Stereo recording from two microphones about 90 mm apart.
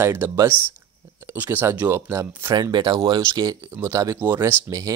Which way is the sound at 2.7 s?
50° right (ahead or behind).